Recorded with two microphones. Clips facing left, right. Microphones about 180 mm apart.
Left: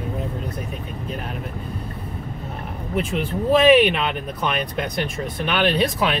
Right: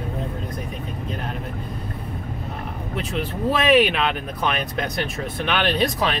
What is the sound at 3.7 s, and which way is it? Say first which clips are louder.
Speech: even; centre (ahead or behind).